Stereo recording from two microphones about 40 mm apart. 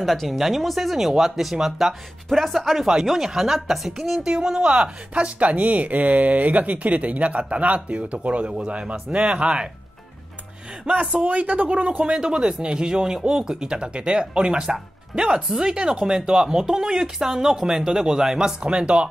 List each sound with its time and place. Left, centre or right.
0.0 s speech: centre
2.2 s speech: centre; by 9.7 s right
10.9 s speech: right
12.0 s speech: right
18.7 s speech: right